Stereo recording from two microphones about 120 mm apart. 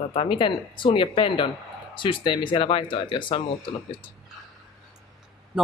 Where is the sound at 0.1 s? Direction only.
50° left (ahead or behind).